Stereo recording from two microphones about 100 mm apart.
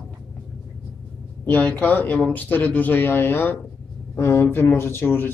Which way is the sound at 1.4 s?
20° left (ahead or behind).